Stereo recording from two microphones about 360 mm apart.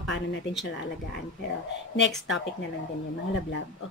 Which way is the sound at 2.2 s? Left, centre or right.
Left.